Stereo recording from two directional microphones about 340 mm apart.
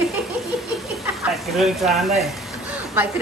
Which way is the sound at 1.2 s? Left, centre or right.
Centre.